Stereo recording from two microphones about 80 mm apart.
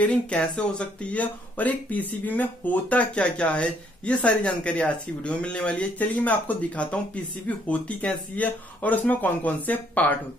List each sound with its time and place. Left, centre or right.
0.0 s speech: centre